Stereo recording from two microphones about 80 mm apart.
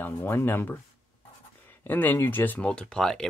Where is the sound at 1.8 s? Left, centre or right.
Left; by 3.2 s centre.